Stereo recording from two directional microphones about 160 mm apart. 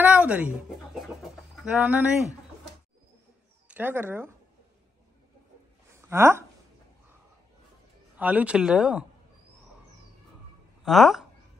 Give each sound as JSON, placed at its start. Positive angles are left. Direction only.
{"t": 0.0, "sound": "chicken", "side_deg": -10}
{"t": 1.6, "sound": "speech", "side_deg": -10}
{"t": 3.6, "sound": "speech", "side_deg": -10}
{"t": 5.9, "sound": "speech", "side_deg": -15}
{"t": 8.2, "sound": "speech", "side_deg": -10}
{"t": 10.8, "sound": "speech", "side_deg": 0}